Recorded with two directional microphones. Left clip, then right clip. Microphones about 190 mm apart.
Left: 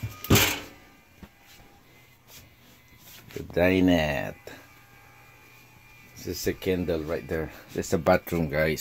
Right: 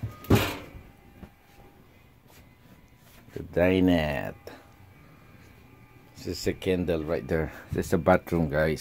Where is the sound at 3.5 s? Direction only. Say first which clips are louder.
Left 1 dB; 5° right (ahead or behind).